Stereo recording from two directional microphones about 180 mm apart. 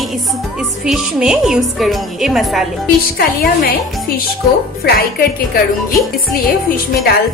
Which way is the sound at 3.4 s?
55° left (ahead or behind).